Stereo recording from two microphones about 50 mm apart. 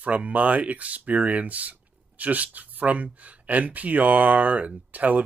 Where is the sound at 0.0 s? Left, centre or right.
Right.